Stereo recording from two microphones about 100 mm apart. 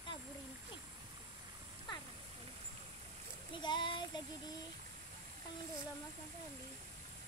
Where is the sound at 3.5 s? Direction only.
50° left (ahead or behind).